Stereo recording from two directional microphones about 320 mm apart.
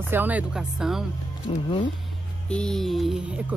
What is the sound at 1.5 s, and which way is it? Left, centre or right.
Speech, centre.